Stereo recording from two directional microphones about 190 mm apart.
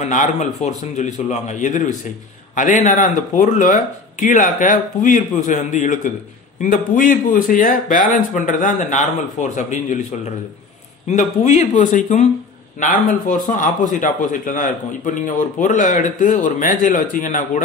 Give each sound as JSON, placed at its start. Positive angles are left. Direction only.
{"t": 0.0, "sound": "a man's voice", "side_deg": 40}
{"t": 11.1, "sound": "a man's voice", "side_deg": 35}